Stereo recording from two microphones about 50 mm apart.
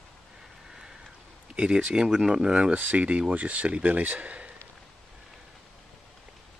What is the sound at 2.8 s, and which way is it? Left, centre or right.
Speech, right.